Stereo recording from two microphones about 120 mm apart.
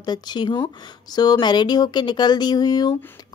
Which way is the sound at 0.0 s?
35° left (ahead or behind).